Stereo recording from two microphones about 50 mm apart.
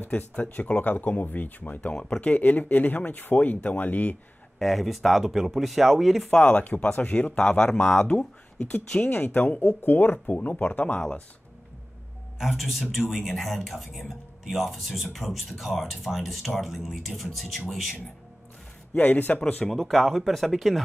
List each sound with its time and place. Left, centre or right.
0.0 s speech: left
2.0 s speech: centre
2.2 s speech: left
4.6 s speech: centre
6.3 s speech: left
9.0 s speech: left
12.4 s speech: centre
18.9 s speech: left
19.6 s speech: centre